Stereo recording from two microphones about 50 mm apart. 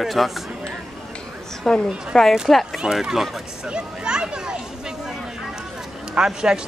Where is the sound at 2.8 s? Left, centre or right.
Centre.